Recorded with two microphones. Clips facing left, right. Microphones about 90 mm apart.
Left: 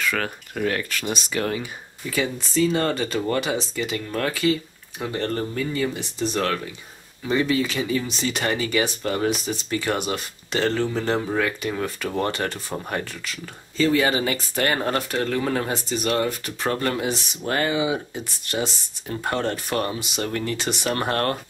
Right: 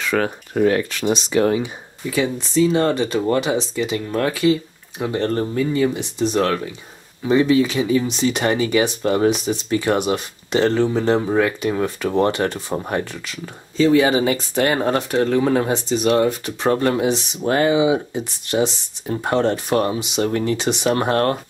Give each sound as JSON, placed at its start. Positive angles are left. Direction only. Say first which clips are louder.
{"t": 0.0, "sound": "speech", "louder": "right 5 dB", "side_deg": -20}
{"t": 2.5, "sound": "speech", "louder": "right 5 dB", "side_deg": -5}
{"t": 13.7, "sound": "speech", "louder": "right 5 dB", "side_deg": -10}